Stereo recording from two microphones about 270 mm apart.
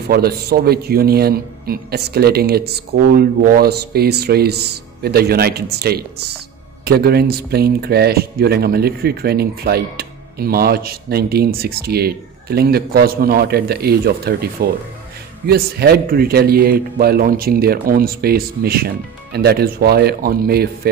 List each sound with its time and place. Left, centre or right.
0.1 s speech: right